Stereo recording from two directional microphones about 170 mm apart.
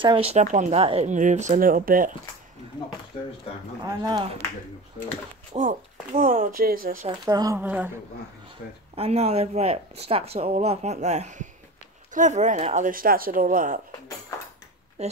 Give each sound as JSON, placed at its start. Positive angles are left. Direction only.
{"t": 0.0, "sound": "speech", "side_deg": -30}
{"t": 3.8, "sound": "speech", "side_deg": -20}
{"t": 5.6, "sound": "speech", "side_deg": -50}
{"t": 7.1, "sound": "a woman's voice", "side_deg": -20}
{"t": 8.9, "sound": "speech", "side_deg": -40}